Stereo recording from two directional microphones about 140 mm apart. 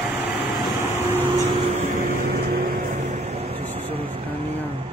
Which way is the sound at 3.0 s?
50° right (ahead or behind).